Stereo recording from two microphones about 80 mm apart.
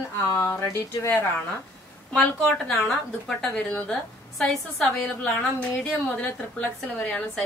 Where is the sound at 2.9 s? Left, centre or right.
Centre.